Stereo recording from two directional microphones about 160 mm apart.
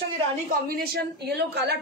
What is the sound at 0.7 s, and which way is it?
A woman's voice, 75° right (ahead or behind).